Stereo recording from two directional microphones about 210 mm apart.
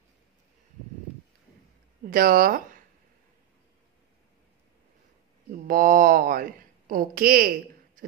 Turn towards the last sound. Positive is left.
turn(degrees=-45)  # may be behind; listen again after turning